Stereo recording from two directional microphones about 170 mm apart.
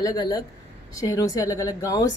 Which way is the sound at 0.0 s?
25° left (ahead or behind).